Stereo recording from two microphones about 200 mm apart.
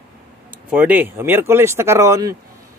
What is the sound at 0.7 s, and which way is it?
Speech, 10° right (ahead or behind).